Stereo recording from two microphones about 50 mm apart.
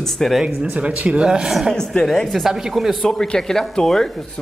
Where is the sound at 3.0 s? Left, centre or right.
Centre.